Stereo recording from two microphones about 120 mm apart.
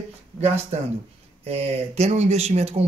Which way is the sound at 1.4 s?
60° right (ahead or behind).